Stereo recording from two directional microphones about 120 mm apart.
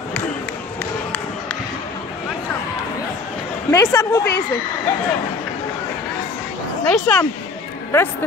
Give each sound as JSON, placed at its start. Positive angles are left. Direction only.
{"t": 3.7, "sound": "a woman's voice", "side_deg": 25}
{"t": 6.9, "sound": "speech", "side_deg": 10}
{"t": 7.9, "sound": "a woman's voice", "side_deg": 20}